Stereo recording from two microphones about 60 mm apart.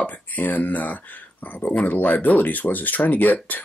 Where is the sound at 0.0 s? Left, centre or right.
Left.